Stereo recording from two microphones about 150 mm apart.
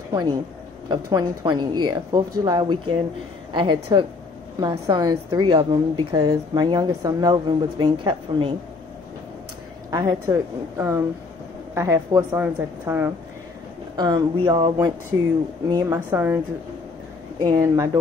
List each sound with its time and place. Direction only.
0.1 s a woman's voice: 25° right (ahead or behind)
9.8 s a woman's voice: 25° right (ahead or behind)
13.9 s a woman's voice: 30° right (ahead or behind)
17.4 s a woman's voice: 20° right (ahead or behind)